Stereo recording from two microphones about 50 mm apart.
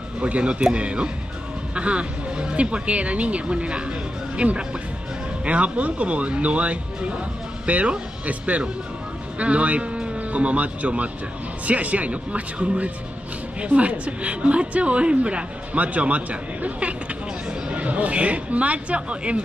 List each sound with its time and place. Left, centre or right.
0.2 s a woman's voice: right